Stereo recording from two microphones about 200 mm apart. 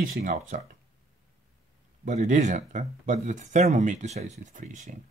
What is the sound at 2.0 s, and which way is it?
Speech, 35° right (ahead or behind).